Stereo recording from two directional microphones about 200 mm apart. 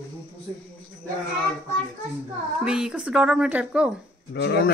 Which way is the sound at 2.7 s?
5° right (ahead or behind).